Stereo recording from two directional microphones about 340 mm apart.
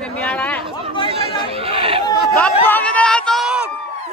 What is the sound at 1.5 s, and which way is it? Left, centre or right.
Chatter, centre.